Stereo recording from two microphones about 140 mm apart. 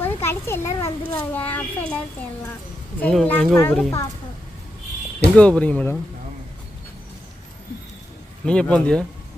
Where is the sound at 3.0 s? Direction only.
10° left (ahead or behind).